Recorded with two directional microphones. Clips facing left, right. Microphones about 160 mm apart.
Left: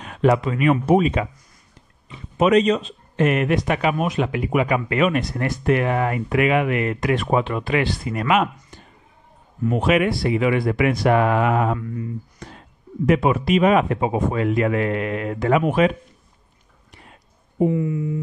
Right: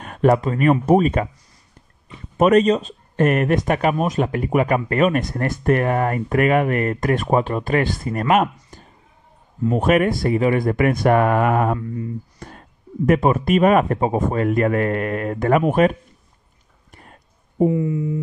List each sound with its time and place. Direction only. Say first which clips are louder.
0.0 s speech: right 2 dB; 50° right (ahead or behind)
2.3 s speech: right 2 dB; 45° right (ahead or behind)
11.8 s speech: right 2 dB; 30° right (ahead or behind)
12.4 s speech: right 1 dB; 50° right (ahead or behind)
16.9 s a sound: right 1 dB; 45° right (ahead or behind)
17.7 s speech: right 2 dB; 25° right (ahead or behind)